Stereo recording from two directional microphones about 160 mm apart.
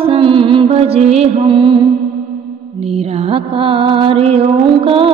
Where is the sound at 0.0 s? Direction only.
35° right (ahead or behind).